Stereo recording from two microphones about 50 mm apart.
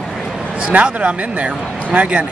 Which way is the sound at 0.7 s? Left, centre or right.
Right.